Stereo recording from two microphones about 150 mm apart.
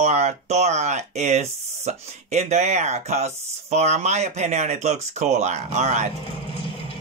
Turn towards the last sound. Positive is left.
turn(degrees=-50)  # may be behind; listen again after turning